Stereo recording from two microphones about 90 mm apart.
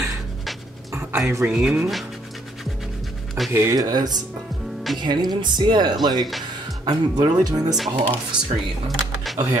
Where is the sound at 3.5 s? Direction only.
30° right (ahead or behind).